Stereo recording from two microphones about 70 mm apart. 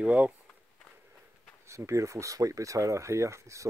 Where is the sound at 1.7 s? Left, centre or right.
Right.